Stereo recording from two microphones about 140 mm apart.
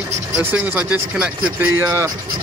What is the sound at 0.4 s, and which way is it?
Speech, 15° right (ahead or behind).